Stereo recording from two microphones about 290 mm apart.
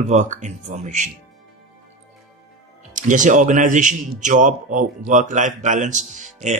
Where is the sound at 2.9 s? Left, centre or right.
Right.